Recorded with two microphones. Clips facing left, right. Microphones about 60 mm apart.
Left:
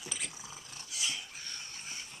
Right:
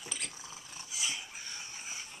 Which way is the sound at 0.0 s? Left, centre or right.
Centre.